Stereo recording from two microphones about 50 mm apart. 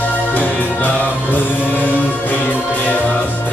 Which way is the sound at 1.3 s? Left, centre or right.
Left.